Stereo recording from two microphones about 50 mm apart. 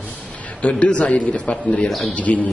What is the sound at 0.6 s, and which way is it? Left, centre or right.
A man's voice, left.